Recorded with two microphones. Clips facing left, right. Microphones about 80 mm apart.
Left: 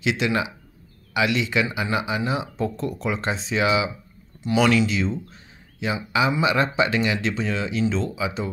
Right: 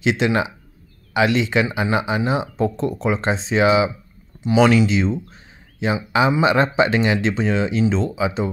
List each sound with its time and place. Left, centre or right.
0.0 s speech: right
5.3 s a sound: right
6.1 s speech: right